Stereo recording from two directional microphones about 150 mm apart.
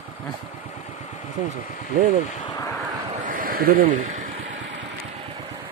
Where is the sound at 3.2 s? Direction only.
65° right (ahead or behind).